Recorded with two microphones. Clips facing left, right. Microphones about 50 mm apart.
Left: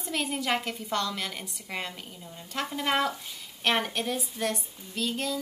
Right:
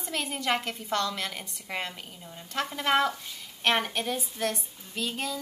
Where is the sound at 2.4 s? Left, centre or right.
Centre.